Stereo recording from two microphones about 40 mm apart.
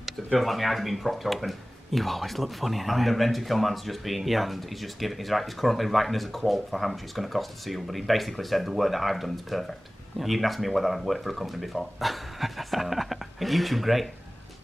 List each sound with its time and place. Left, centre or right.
0.4 s speech: centre